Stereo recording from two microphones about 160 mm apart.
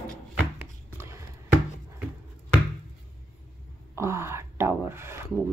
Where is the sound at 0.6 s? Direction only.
15° right (ahead or behind).